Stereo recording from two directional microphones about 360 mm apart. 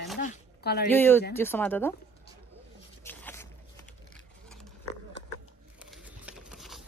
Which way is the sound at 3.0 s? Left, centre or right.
Centre.